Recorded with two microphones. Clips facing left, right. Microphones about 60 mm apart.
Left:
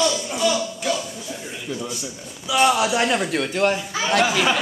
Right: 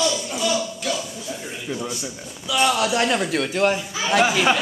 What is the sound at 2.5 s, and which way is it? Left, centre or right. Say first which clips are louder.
A man's voice: left 2 dB; centre.